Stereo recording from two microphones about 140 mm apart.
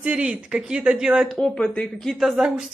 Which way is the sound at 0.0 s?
5° right (ahead or behind).